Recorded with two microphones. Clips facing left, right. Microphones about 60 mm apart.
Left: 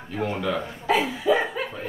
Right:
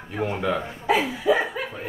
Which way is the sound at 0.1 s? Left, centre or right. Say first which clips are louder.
Right 1 dB; right.